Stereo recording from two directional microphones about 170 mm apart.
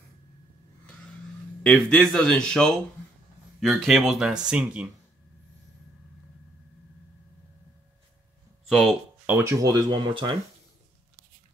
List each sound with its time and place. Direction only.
1.6 s speech: 5° left (ahead or behind)
8.6 s speech: centre (ahead or behind)
9.2 s speech: 15° right (ahead or behind)